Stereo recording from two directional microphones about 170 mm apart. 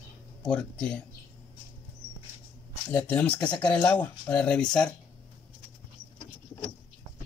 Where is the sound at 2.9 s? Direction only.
5° left (ahead or behind).